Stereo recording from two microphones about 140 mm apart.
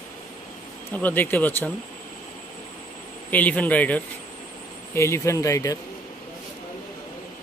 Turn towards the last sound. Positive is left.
turn(degrees=25)  # may be behind; listen again after turning